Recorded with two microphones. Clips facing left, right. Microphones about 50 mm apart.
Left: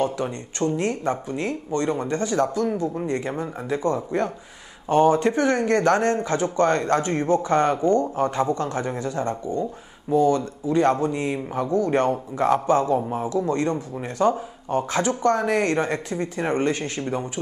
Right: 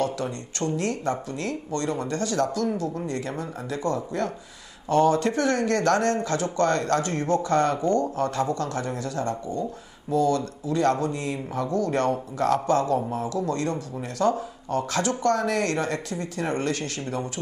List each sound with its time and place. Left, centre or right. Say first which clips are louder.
0.0 s speech: left 2 dB; left